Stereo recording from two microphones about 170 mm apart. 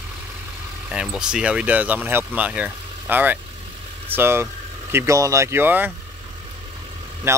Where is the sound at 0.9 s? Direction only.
5° right (ahead or behind).